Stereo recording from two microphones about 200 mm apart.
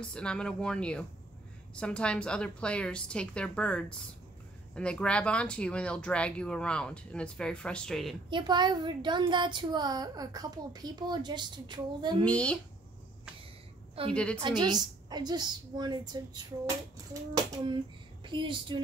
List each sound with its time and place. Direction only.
0.0 s speech: 5° left (ahead or behind)
8.3 s a woman's voice: 20° right (ahead or behind)
12.3 s speech: 5° left (ahead or behind)
14.1 s speech: 5° left (ahead or behind)
14.4 s a woman's voice: 20° right (ahead or behind)